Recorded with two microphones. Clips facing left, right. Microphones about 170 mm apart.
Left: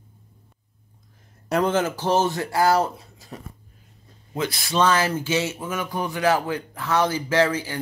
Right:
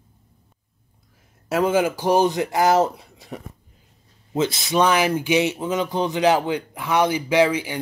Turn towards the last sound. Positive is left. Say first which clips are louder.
# right 3 dB
turn(degrees=-15)  # may be behind; listen again after turning